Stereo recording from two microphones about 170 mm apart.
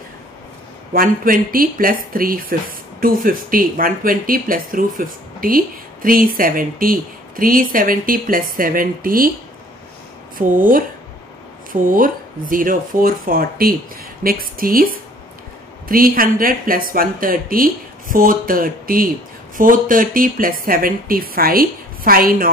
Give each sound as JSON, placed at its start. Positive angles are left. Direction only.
{"t": 0.9, "sound": "speech", "side_deg": -55}
{"t": 10.3, "sound": "a woman's voice", "side_deg": -55}